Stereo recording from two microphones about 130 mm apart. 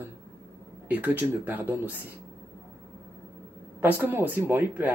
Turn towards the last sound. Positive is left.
turn(degrees=-15)  # may be behind; listen again after turning